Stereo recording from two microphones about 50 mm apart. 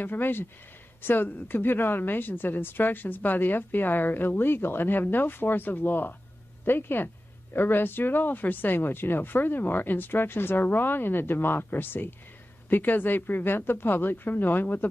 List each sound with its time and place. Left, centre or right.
0.0 s a woman's voice: left